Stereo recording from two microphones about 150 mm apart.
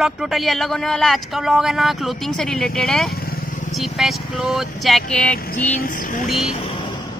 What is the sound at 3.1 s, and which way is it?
Vehicle, 75° left (ahead or behind).